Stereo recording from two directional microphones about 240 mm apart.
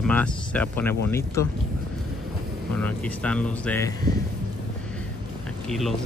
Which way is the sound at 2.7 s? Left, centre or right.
Centre.